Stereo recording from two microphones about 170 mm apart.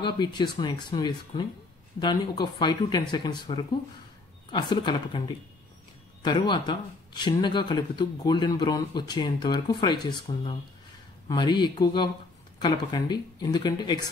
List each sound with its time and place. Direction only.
0.0 s speech: 25° left (ahead or behind)